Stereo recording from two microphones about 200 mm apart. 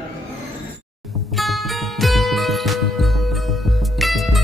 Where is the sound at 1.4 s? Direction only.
Centre (ahead or behind).